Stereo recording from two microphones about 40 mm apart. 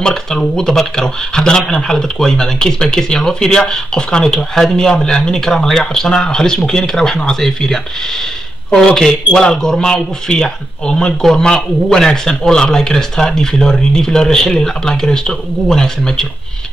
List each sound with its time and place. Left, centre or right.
0.0 s speech: centre
8.8 s speech: centre